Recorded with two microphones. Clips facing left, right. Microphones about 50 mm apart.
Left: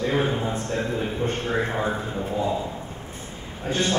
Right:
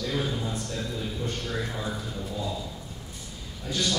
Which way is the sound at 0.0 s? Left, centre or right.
Left.